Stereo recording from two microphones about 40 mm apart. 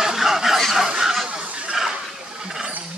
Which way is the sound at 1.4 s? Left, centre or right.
Right.